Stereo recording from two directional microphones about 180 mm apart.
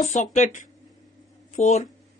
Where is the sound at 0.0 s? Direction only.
40° left (ahead or behind).